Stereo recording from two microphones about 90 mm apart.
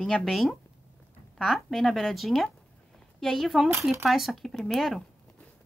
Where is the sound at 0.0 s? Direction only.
Centre (ahead or behind).